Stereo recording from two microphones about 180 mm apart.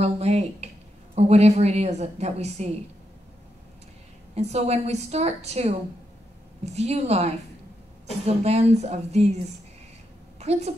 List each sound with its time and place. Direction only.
0.0 s a woman's voice: 35° right (ahead or behind)
4.4 s a woman's voice: 35° right (ahead or behind)
10.4 s a woman's voice: 35° right (ahead or behind)